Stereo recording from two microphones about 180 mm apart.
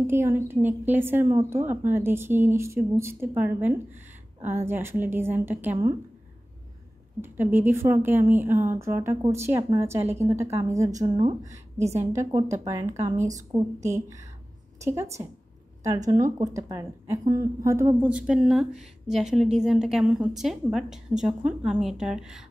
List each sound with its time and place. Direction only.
0.0 s a woman's voice: 15° right (ahead or behind)
7.2 s a woman's voice: 10° right (ahead or behind)
16.3 s a woman's voice: 15° right (ahead or behind)